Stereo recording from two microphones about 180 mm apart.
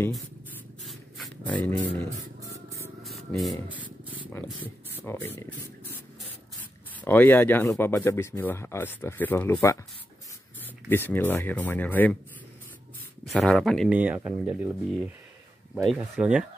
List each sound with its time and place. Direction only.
0.8 s spray: centre (ahead or behind)
2.4 s spray: 15° right (ahead or behind)
3.0 s a sound: centre (ahead or behind)
3.3 s spray: 5° right (ahead or behind)
5.0 s speech: 10° left (ahead or behind)
7.1 s speech: 10° left (ahead or behind)
13.3 s speech: centre (ahead or behind)